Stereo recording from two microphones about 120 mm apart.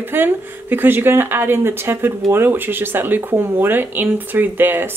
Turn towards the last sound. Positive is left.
turn(degrees=-15)  # may be behind; listen again after turning